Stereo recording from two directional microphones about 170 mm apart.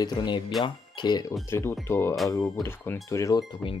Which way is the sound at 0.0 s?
25° left (ahead or behind).